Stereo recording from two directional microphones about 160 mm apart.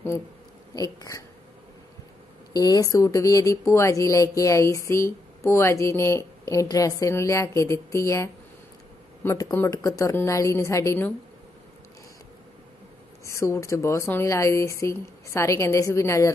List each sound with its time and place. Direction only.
0.7 s speech: 20° left (ahead or behind)
2.5 s speech: 25° left (ahead or behind)
13.2 s speech: 20° left (ahead or behind)